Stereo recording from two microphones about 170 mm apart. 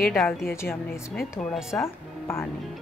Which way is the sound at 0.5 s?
15° left (ahead or behind).